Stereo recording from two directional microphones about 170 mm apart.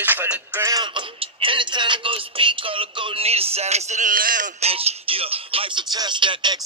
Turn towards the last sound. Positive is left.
turn(degrees=-25)  # may be behind; listen again after turning